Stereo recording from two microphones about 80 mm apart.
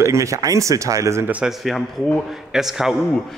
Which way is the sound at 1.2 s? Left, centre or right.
Centre.